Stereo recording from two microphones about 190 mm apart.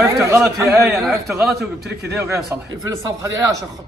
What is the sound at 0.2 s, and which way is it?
Speech, 15° right (ahead or behind).